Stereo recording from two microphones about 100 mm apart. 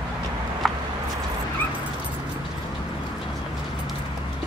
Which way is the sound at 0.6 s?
Centre (ahead or behind).